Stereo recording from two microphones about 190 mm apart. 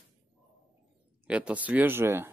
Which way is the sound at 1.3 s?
5° right (ahead or behind).